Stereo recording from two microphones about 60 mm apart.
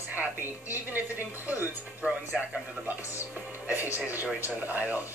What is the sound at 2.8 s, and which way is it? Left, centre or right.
A woman's voice, right.